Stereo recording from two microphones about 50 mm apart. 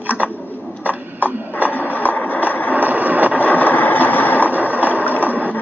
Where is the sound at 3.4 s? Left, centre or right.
Left.